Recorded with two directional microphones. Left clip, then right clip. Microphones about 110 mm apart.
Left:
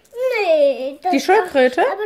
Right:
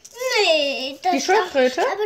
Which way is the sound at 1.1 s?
60° left (ahead or behind).